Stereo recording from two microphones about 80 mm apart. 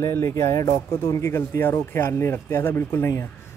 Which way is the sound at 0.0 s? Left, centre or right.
Left.